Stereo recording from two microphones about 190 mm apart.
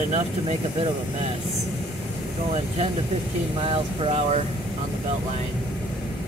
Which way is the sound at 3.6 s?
30° right (ahead or behind).